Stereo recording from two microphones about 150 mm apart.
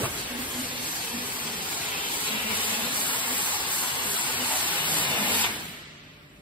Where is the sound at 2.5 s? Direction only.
10° left (ahead or behind).